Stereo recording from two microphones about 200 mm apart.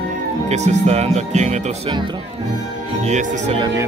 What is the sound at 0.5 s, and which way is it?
Speech, 35° right (ahead or behind).